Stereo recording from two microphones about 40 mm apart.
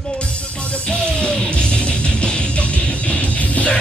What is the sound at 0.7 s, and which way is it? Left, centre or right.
Music, left.